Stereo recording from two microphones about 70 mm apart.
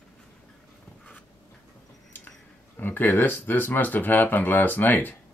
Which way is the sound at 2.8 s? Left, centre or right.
Left.